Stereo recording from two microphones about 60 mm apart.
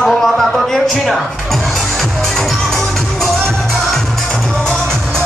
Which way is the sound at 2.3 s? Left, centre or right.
Centre.